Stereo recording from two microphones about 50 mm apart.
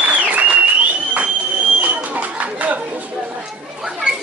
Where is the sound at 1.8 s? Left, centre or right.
Right.